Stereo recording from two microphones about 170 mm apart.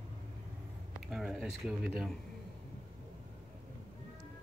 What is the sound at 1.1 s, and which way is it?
Speech, 5° right (ahead or behind).